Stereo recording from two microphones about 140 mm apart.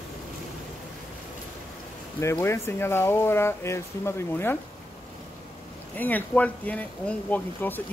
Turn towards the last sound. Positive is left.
turn(degrees=15)  # may be behind; listen again after turning